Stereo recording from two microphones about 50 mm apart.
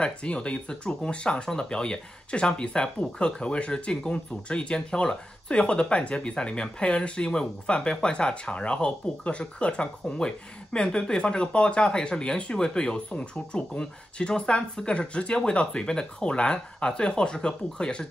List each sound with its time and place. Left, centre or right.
0.0 s speech: left